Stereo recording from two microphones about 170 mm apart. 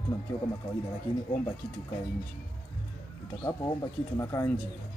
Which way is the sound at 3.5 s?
15° left (ahead or behind).